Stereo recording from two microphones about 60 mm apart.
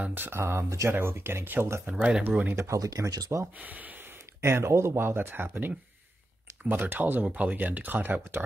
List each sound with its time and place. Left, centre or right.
0.0 s speech: right
0.4 s speech: right
1.9 s speech: centre
2.5 s speech: right
2.8 s speech: right
3.5 s speech: right
4.4 s speech: right
6.7 s speech: right